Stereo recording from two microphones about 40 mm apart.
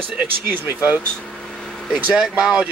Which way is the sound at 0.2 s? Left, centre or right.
Right.